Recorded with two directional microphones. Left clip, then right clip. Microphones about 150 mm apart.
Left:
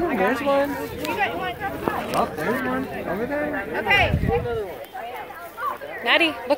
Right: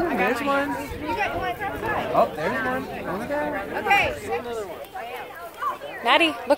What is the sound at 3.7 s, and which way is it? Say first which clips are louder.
Speech: left 1 dB; 30° right (ahead or behind).